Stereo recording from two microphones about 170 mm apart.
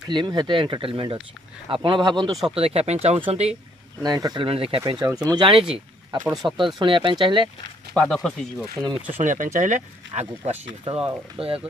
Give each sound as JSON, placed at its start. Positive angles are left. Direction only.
{"t": 0.1, "sound": "speech", "side_deg": -25}
{"t": 4.0, "sound": "speech", "side_deg": -25}
{"t": 4.8, "sound": "speech", "side_deg": -20}
{"t": 5.7, "sound": "speech", "side_deg": -10}
{"t": 6.8, "sound": "speech", "side_deg": -30}
{"t": 7.9, "sound": "speech", "side_deg": 5}
{"t": 9.2, "sound": "speech", "side_deg": -50}
{"t": 11.4, "sound": "speech", "side_deg": -5}